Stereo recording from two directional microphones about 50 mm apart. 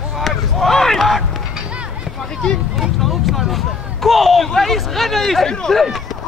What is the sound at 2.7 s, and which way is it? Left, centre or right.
Speech, centre.